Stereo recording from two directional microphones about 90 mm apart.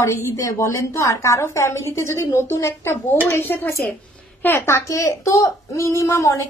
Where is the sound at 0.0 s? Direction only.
35° left (ahead or behind).